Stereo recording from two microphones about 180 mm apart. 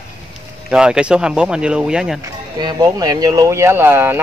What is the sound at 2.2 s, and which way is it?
Speech, 25° right (ahead or behind).